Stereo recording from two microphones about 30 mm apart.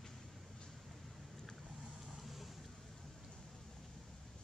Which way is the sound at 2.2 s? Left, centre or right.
Centre.